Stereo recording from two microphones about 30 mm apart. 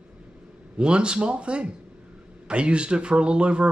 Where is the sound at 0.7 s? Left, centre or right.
Right.